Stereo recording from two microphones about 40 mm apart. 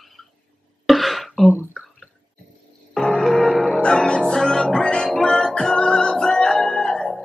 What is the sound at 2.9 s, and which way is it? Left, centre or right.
Music, centre.